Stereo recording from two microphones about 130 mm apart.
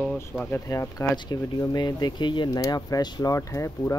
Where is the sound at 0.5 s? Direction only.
25° left (ahead or behind).